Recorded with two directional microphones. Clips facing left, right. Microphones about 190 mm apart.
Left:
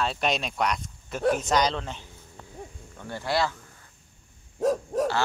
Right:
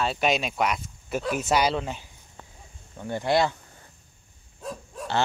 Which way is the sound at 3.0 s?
20° right (ahead or behind).